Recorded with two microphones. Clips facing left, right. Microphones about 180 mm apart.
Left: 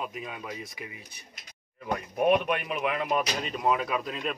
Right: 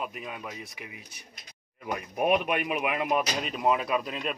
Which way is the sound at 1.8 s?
10° right (ahead or behind).